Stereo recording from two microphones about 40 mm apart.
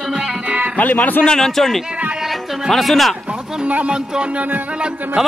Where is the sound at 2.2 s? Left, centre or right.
Centre.